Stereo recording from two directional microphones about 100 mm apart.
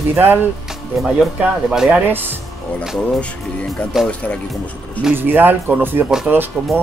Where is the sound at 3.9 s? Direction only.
5° right (ahead or behind).